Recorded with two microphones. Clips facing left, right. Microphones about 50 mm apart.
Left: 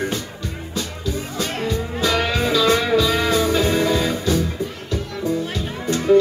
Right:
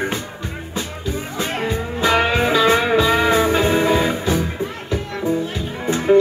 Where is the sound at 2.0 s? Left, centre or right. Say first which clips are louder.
Right 4 dB; right.